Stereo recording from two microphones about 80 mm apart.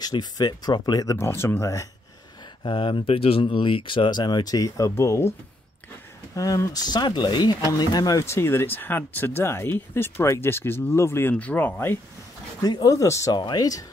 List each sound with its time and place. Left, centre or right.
0.0 s speech: left
1.1 s speech: left
2.6 s speech: left
4.9 s speech: left
6.3 s speech: left
8.3 s speech: left
11.3 s speech: left
12.6 s speech: left
13.3 s speech: left